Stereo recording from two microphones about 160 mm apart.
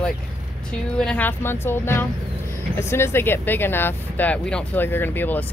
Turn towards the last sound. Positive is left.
turn(degrees=10)  # may be behind; listen again after turning